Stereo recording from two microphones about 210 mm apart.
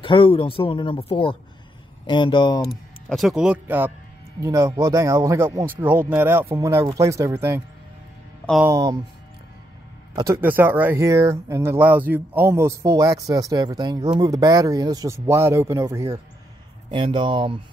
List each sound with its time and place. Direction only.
0.0 s speech: 25° left (ahead or behind)
3.1 s speech: centre (ahead or behind)
8.6 s speech: 15° right (ahead or behind)
10.1 s speech: 15° right (ahead or behind)